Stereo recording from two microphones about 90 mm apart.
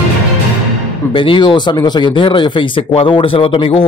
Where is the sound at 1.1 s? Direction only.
70° left (ahead or behind).